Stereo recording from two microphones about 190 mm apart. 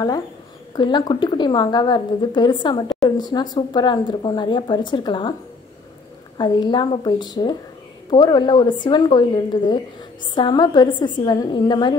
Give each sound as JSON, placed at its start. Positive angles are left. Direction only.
{"t": 0.7, "sound": "a woman's voice", "side_deg": 25}
{"t": 6.3, "sound": "a woman's voice", "side_deg": 25}